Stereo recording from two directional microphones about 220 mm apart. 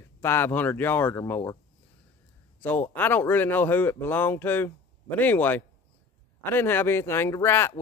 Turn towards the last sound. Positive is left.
turn(degrees=10)  # may be behind; listen again after turning